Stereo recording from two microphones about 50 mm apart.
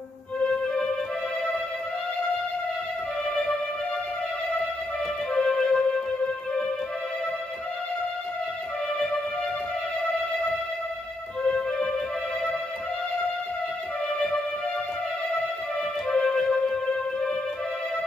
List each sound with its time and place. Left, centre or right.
5.3 s music: centre
11.4 s music: left
16.1 s music: centre